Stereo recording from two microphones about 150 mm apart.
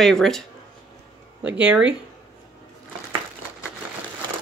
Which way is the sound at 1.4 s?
10° right (ahead or behind).